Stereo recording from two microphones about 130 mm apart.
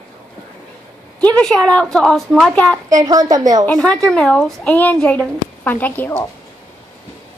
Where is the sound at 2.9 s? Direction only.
25° right (ahead or behind).